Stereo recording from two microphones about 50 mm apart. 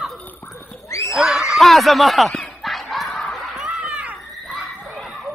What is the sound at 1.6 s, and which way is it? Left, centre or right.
Speech, centre.